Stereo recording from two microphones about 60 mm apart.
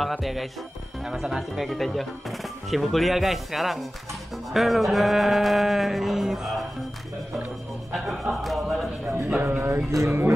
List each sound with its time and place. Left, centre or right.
0.0 s speech: centre
7.9 s music: centre
9.4 s music: right